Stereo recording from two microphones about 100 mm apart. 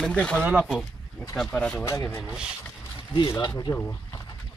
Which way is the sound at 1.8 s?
35° left (ahead or behind).